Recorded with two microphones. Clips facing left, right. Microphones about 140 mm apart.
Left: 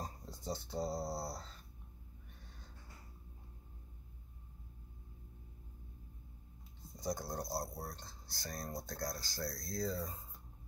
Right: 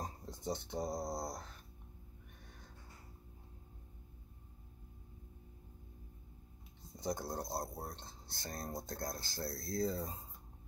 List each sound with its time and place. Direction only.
0.0 s speech: 20° right (ahead or behind)
7.0 s speech: 25° right (ahead or behind)